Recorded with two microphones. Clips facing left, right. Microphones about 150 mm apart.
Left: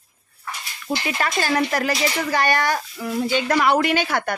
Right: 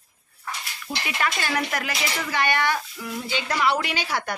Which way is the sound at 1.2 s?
35° left (ahead or behind).